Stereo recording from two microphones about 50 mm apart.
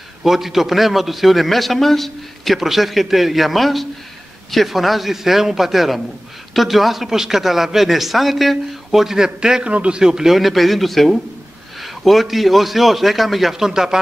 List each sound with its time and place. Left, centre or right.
0.2 s a man's voice: centre